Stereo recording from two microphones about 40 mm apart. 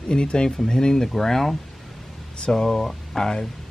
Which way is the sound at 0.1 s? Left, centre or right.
Left.